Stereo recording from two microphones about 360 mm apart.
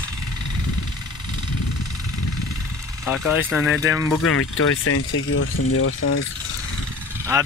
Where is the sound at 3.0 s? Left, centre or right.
Centre.